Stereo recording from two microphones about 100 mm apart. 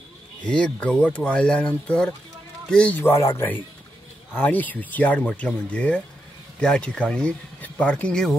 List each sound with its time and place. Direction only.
0.4 s speech: 10° left (ahead or behind)
3.0 s speech: 25° left (ahead or behind); by 8.4 s 5° left (ahead or behind)